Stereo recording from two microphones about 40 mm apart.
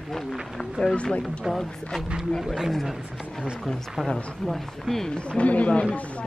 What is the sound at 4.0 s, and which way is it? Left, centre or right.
Speech, centre.